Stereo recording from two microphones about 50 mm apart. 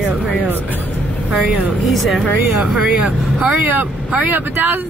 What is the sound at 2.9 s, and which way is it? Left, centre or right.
Speech, right.